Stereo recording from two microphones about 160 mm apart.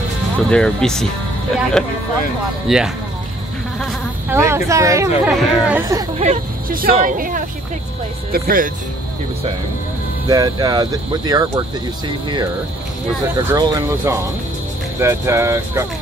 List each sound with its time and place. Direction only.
0.5 s speech: 5° left (ahead or behind)
4.3 s speech: 15° right (ahead or behind)
5.2 s speech: 10° right (ahead or behind)
6.1 s speech: 40° right (ahead or behind)
7.0 s speech: 60° right (ahead or behind)
10.2 s speech: 25° right (ahead or behind)
13.4 s speech: 20° right (ahead or behind)